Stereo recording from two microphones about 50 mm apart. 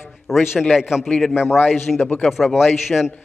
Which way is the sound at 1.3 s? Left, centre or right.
Left.